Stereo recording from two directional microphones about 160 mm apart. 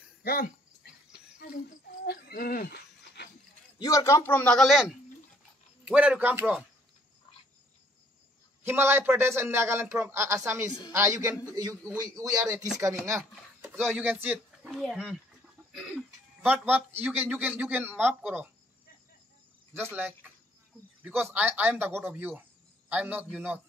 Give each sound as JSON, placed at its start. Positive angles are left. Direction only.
{"t": 0.2, "sound": "speech", "side_deg": 70}
{"t": 2.0, "sound": "livestock", "side_deg": 75}
{"t": 3.8, "sound": "a man's voice", "side_deg": 20}
{"t": 8.6, "sound": "a man's voice", "side_deg": -15}
{"t": 13.7, "sound": "speech", "side_deg": 0}
{"t": 14.0, "sound": "speech", "side_deg": -10}
{"t": 14.7, "sound": "a man's voice", "side_deg": 0}
{"t": 19.7, "sound": "a man's voice", "side_deg": -10}